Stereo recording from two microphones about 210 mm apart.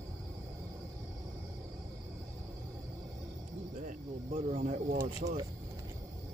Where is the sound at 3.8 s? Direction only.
35° right (ahead or behind).